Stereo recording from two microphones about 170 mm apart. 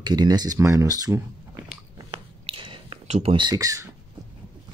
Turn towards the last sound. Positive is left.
turn(degrees=-20)  # may be behind; listen again after turning